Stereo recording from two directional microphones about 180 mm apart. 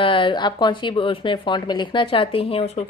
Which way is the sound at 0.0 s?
30° left (ahead or behind).